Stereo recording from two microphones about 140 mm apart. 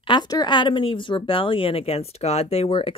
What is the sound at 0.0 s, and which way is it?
Speech, 35° left (ahead or behind).